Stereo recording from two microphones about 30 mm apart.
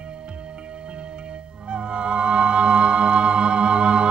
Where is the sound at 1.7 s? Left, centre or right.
Right.